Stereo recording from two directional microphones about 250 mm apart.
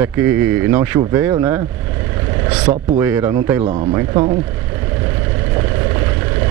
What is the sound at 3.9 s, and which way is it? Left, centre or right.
Speech, right.